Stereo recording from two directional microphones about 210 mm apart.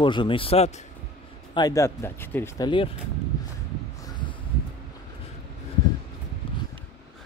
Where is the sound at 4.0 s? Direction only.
20° left (ahead or behind).